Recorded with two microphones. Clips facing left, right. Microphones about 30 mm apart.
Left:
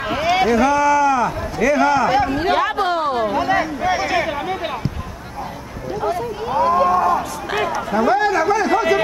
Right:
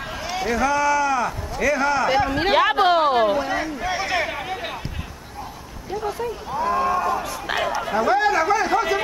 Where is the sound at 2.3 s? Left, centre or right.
Right.